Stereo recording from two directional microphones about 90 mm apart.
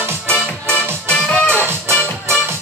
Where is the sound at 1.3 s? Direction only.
15° left (ahead or behind).